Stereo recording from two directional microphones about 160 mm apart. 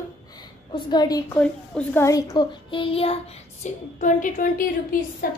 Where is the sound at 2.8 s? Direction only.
35° left (ahead or behind).